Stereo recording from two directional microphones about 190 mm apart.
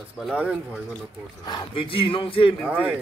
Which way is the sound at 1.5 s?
25° left (ahead or behind).